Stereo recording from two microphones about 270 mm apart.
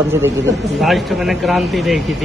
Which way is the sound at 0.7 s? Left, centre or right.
Centre.